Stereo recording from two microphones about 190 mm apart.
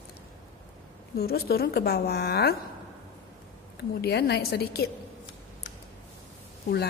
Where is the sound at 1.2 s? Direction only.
55° left (ahead or behind).